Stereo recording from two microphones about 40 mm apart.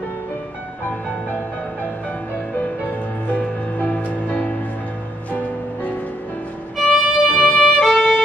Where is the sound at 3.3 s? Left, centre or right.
Left.